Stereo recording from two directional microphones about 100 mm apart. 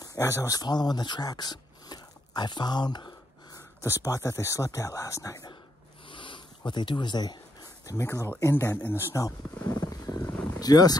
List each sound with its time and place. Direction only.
0.0 s speech: 30° left (ahead or behind)
3.5 s speech: 30° left (ahead or behind)
6.0 s a sound: 55° left (ahead or behind)
7.8 s speech: 30° left (ahead or behind)
10.3 s vehicle: 15° left (ahead or behind)
10.6 s speech: 40° left (ahead or behind)